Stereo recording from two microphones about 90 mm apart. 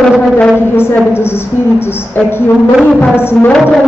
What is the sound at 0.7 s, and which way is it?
A woman's voice, 25° left (ahead or behind).